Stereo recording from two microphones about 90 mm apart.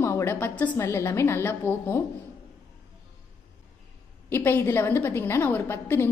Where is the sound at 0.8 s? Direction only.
30° left (ahead or behind).